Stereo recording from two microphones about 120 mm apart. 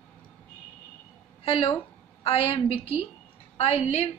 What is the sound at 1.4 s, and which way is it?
A woman's voice, 50° left (ahead or behind).